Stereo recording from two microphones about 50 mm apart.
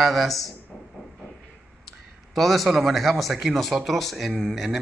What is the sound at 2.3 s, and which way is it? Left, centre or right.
Speech, centre.